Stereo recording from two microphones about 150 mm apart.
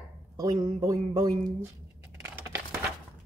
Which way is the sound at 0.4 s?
30° right (ahead or behind).